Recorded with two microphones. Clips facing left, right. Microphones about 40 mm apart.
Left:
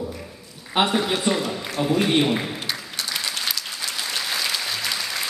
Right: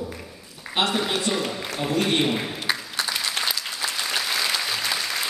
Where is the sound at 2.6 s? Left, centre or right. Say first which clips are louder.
Right 3 dB; centre.